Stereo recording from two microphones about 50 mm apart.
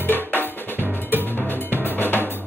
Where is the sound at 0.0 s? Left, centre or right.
Left.